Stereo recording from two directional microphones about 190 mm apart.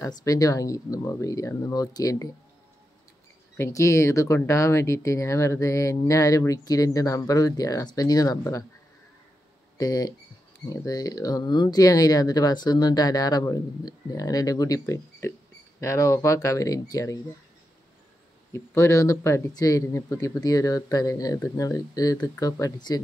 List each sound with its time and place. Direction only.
0.0 s speech: 15° left (ahead or behind)
3.5 s speech: 15° left (ahead or behind)
9.8 s speech: 20° left (ahead or behind)
18.5 s speech: 15° left (ahead or behind)